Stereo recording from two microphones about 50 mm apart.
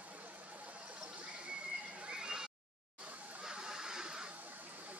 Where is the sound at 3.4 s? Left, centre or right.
Centre.